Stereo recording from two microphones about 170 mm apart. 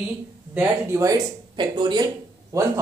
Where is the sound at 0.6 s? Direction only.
15° right (ahead or behind).